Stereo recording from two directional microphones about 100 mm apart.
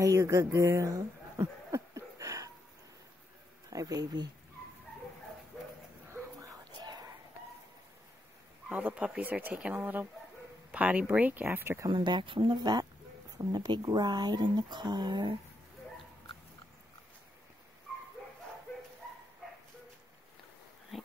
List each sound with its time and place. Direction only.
0.0 s a sound: 35° right (ahead or behind)
3.7 s speech: 40° right (ahead or behind)
6.4 s a sound: 45° right (ahead or behind)
8.6 s speech: 15° right (ahead or behind)
11.9 s speech: 50° right (ahead or behind)
13.4 s speech: 45° right (ahead or behind)
20.9 s dog: centre (ahead or behind)